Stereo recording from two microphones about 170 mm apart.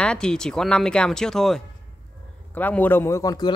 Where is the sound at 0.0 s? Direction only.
5° left (ahead or behind).